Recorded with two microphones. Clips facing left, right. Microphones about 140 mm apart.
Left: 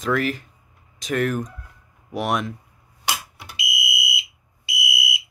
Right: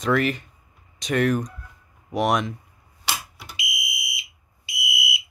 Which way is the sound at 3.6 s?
20° right (ahead or behind).